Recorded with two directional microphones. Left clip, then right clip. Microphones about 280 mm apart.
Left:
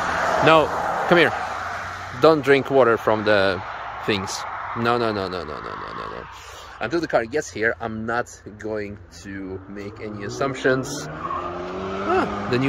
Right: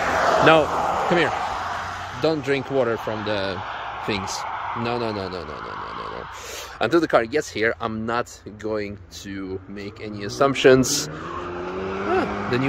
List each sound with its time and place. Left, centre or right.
0.1 s vehicle: right
0.7 s a sound: right
2.2 s speech: centre
3.6 s a sound: right
4.8 s speech: centre
6.8 s speech: centre
10.4 s speech: right
11.7 s vehicle: centre